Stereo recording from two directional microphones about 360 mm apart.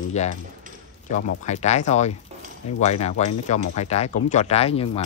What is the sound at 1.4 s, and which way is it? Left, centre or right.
Speech, centre.